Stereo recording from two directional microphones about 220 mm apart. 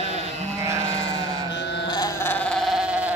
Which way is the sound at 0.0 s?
30° right (ahead or behind).